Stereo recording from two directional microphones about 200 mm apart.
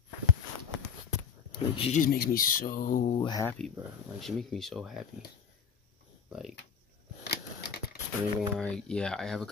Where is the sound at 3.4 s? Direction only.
5° left (ahead or behind).